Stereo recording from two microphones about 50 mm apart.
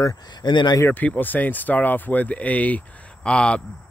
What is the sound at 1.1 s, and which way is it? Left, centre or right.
Speech, left.